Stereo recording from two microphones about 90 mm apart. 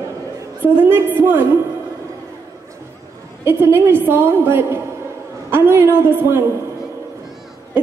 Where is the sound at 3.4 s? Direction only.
25° right (ahead or behind).